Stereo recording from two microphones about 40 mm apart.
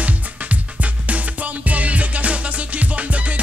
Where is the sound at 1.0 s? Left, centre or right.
Right.